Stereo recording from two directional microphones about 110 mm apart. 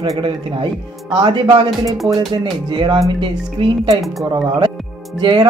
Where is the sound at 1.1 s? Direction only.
45° right (ahead or behind).